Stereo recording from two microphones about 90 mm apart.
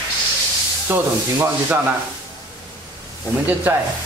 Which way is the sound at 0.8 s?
25° right (ahead or behind).